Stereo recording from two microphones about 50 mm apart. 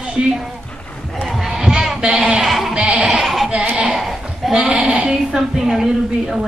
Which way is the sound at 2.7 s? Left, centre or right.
Centre.